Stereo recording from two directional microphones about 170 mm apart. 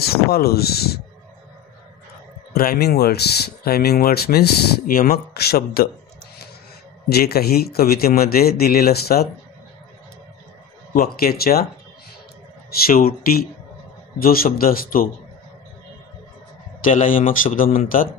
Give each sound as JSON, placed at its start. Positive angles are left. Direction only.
{"t": 0.0, "sound": "speech", "side_deg": 65}
{"t": 2.5, "sound": "speech", "side_deg": 60}
{"t": 7.1, "sound": "speech", "side_deg": 70}
{"t": 10.9, "sound": "speech", "side_deg": 60}
{"t": 12.8, "sound": "speech", "side_deg": 60}
{"t": 16.8, "sound": "a man's voice", "side_deg": 50}